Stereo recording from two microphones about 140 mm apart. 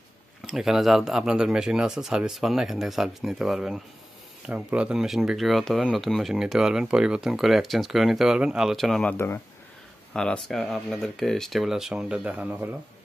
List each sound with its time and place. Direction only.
0.5 s speech: centre (ahead or behind)
9.1 s speech: 15° left (ahead or behind)
10.1 s speech: 5° left (ahead or behind)